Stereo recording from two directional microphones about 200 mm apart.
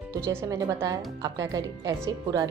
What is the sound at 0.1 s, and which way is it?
Speech, 10° right (ahead or behind).